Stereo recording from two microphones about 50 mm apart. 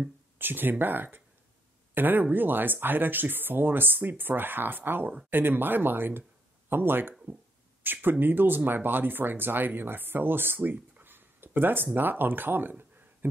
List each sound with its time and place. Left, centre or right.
0.4 s speech: right